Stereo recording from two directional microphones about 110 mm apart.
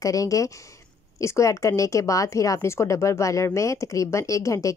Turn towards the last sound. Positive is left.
turn(degrees=30)  # may be behind; listen again after turning